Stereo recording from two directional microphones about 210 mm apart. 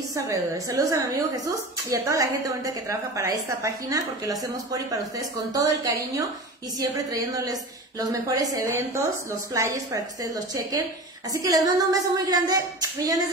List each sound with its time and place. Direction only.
0.1 s a woman's voice: 15° right (ahead or behind)